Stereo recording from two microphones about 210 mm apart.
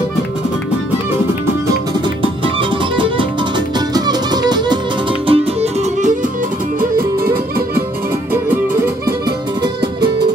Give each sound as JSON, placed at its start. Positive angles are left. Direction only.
{"t": 3.0, "sound": "music", "side_deg": -20}
{"t": 7.2, "sound": "music", "side_deg": -45}